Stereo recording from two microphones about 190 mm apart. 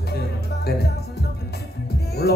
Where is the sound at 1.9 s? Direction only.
60° left (ahead or behind).